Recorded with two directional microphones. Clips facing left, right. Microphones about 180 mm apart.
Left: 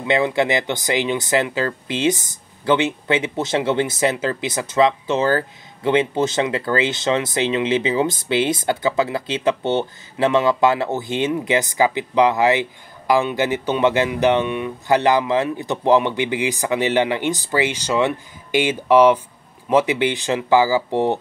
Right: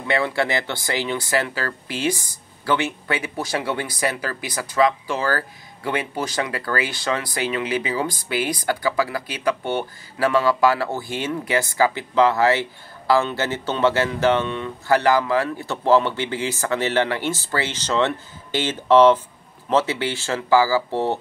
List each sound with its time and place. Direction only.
0.0 s speech: 20° left (ahead or behind)